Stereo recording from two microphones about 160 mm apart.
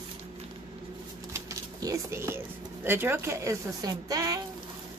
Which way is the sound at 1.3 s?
20° right (ahead or behind).